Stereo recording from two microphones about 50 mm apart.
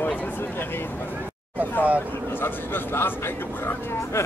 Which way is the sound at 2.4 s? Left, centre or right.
Left.